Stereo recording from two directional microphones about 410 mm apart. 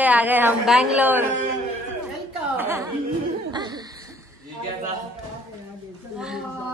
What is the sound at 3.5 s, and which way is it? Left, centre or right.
Hoot, centre.